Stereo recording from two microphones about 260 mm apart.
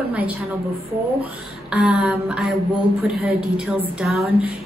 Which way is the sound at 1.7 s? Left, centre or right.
Centre.